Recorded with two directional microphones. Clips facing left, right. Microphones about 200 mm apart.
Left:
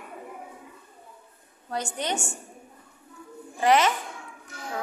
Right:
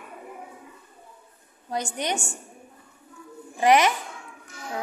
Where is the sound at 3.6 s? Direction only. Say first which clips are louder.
Right 2 dB; 15° right (ahead or behind).